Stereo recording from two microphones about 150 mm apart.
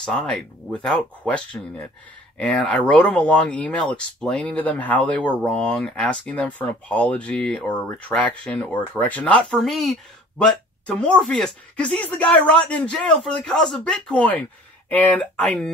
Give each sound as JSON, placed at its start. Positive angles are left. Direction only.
{"t": 0.0, "sound": "speech", "side_deg": 5}